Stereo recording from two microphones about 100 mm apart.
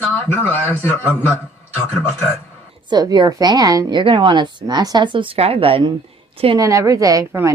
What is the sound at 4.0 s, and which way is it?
Speech, 60° right (ahead or behind).